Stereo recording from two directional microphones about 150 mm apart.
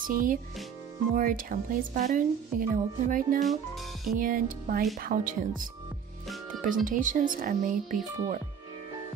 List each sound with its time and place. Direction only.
0.0 s speech: 65° right (ahead or behind)
3.4 s speech: centre (ahead or behind)
4.2 s speech: 65° right (ahead or behind)
6.2 s music: centre (ahead or behind)
6.6 s speech: 60° right (ahead or behind)